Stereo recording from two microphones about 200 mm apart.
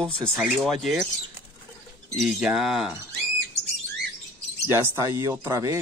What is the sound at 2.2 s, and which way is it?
Speech, 5° right (ahead or behind).